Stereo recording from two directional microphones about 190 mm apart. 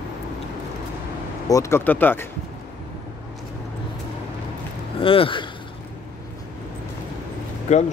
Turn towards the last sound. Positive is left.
turn(degrees=35)  # may be behind; listen again after turning